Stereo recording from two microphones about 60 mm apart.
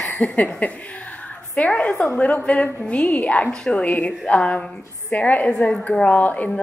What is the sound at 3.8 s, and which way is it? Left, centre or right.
A woman's voice, left.